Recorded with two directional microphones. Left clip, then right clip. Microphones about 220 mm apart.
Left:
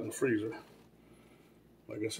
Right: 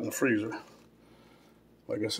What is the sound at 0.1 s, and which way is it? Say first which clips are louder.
Speech: right 4 dB; 35° right (ahead or behind).